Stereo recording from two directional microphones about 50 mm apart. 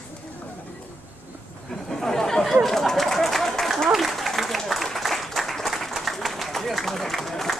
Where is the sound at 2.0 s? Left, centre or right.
Centre.